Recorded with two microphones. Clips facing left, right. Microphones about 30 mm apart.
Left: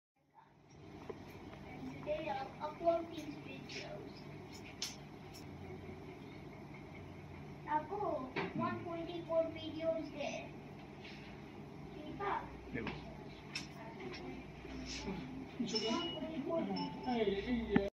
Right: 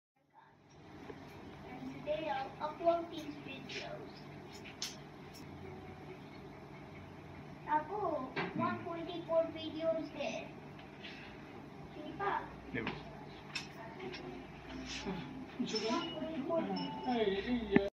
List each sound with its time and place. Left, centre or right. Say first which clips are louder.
2.0 s a sound: right 3 dB; centre
3.7 s speech: right 3 dB; right
7.6 s a woman's voice: right 3 dB; centre
12.2 s a woman's voice: right 3 dB; centre
13.5 s vehicle: right 2 dB; centre
15.8 s a woman's voice: right 2 dB; centre